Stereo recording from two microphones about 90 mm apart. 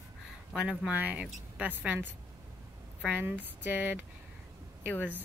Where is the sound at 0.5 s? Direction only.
10° right (ahead or behind).